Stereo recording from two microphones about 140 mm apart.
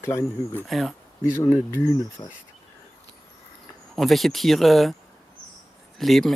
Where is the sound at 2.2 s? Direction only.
40° left (ahead or behind).